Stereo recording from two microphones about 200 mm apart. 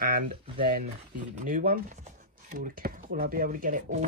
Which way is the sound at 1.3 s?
45° right (ahead or behind).